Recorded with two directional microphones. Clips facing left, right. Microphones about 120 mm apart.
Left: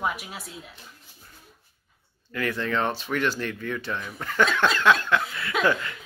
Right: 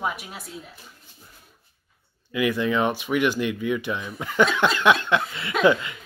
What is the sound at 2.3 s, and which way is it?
Speech, 15° right (ahead or behind).